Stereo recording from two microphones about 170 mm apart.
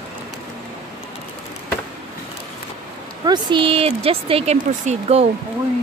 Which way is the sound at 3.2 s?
25° right (ahead or behind).